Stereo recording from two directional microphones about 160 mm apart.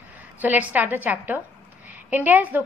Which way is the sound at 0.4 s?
10° right (ahead or behind).